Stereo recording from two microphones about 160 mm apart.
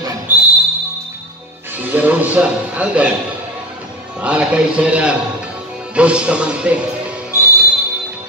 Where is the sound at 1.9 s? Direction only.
10° right (ahead or behind).